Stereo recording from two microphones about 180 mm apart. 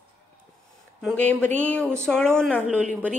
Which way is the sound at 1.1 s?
10° left (ahead or behind).